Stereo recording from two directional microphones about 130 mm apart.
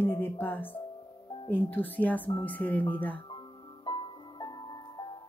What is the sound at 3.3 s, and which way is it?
Music, 40° left (ahead or behind).